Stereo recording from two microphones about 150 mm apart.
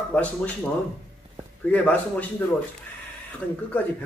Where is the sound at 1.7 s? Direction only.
10° left (ahead or behind).